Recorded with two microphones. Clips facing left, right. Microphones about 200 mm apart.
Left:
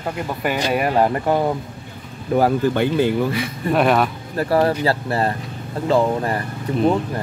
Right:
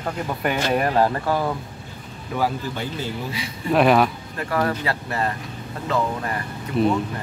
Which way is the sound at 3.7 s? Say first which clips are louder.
Right 1 dB; centre (ahead or behind).